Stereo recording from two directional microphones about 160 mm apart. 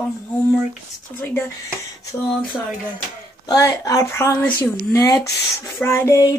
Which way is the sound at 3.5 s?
20° left (ahead or behind).